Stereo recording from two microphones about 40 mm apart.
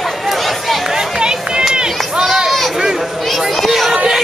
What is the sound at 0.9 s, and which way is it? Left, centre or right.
Run, centre.